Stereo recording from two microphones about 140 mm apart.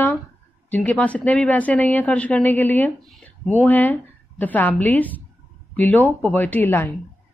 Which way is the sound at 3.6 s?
15° left (ahead or behind).